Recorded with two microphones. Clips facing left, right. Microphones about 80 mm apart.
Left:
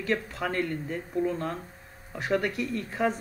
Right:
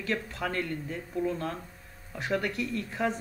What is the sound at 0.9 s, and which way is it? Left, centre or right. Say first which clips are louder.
Speech: left 2 dB; centre.